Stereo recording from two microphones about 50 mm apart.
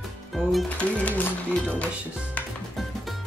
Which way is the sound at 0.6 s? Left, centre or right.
Left.